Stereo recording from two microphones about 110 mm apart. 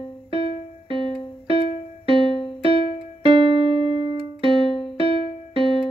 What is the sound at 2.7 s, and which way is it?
Keyboard, 55° right (ahead or behind).